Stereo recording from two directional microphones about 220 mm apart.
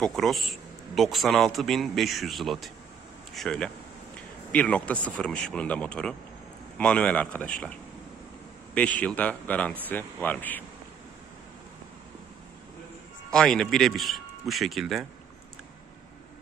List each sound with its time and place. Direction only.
0.0 s a man's voice: centre (ahead or behind)
13.3 s a man's voice: 5° left (ahead or behind)